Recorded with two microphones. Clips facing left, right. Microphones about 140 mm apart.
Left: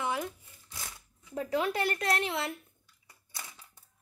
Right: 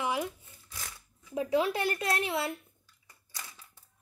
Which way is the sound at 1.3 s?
10° right (ahead or behind).